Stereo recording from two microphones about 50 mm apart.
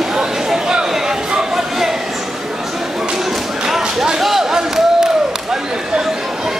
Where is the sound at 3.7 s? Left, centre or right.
Centre.